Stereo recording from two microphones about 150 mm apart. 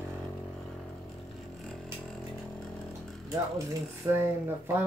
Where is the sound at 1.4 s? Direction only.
5° left (ahead or behind).